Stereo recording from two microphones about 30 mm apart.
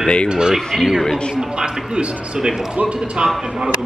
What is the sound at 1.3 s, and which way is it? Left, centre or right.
Speech, right.